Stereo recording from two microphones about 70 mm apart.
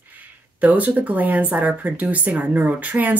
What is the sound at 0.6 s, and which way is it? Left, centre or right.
Speech, right.